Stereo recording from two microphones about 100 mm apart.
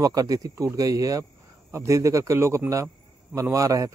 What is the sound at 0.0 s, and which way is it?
Speech, 35° right (ahead or behind).